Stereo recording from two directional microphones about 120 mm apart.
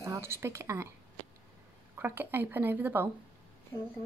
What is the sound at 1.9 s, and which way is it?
A woman's voice, 20° right (ahead or behind).